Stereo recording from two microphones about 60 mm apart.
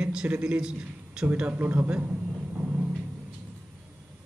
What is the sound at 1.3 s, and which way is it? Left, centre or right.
Speech, right.